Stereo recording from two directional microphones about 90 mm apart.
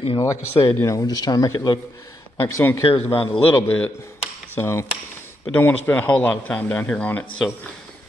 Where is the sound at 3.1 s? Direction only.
85° left.